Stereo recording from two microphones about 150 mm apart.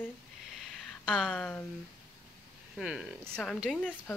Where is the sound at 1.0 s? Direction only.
5° left (ahead or behind).